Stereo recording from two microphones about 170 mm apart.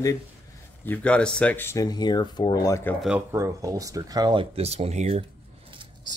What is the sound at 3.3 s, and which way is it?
Speech, 15° right (ahead or behind).